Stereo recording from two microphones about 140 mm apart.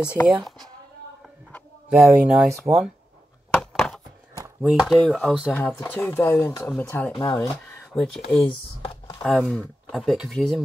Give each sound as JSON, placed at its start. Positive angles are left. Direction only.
{"t": 0.2, "sound": "speech", "side_deg": 20}
{"t": 1.9, "sound": "speech", "side_deg": -5}
{"t": 3.5, "sound": "a sound", "side_deg": 5}
{"t": 4.6, "sound": "speech", "side_deg": -5}
{"t": 7.3, "sound": "a sound", "side_deg": 15}
{"t": 7.9, "sound": "speech", "side_deg": 0}
{"t": 8.5, "sound": "computer keyboard", "side_deg": 35}
{"t": 9.2, "sound": "speech", "side_deg": 0}